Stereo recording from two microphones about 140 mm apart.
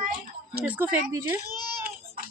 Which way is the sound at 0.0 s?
80° right.